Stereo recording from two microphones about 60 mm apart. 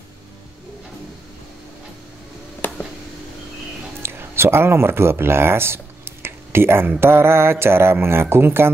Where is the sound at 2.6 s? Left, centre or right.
Left.